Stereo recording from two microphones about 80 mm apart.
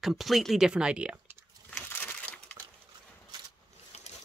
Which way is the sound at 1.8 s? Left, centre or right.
Left.